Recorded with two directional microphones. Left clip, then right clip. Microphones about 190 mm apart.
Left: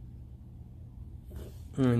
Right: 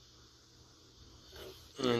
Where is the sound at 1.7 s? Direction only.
15° right (ahead or behind).